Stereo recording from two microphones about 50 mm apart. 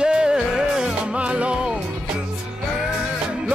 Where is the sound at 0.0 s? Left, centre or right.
Centre.